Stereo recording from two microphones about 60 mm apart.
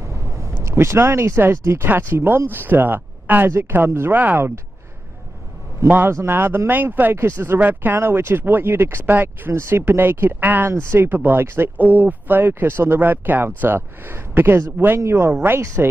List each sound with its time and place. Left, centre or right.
0.4 s speech: right
5.9 s speech: right
7.2 s speech: right
9.5 s speech: right